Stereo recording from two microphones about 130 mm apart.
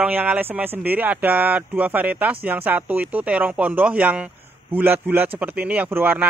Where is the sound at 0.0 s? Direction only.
10° right (ahead or behind).